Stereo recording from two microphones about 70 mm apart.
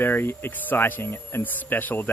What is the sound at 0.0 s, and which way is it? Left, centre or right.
Speech, left.